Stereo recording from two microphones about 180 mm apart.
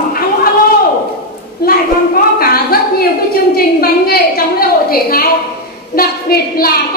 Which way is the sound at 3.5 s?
60° left (ahead or behind).